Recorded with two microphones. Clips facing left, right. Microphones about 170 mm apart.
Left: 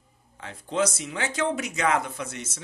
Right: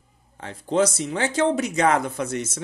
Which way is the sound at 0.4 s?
35° right (ahead or behind).